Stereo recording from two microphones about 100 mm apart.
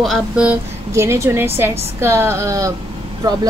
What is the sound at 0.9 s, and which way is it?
A woman's voice, 30° right (ahead or behind).